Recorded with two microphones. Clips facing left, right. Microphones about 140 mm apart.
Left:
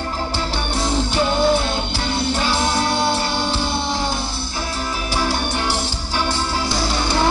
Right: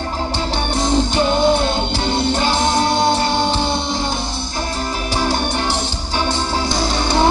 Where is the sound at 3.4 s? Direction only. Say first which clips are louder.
Right 4 dB; 10° left (ahead or behind).